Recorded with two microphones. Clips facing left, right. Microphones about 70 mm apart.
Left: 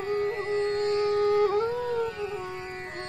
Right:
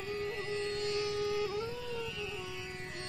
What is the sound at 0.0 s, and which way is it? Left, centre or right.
Music, left.